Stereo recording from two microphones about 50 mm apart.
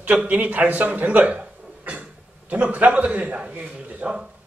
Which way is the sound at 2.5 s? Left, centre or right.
Right.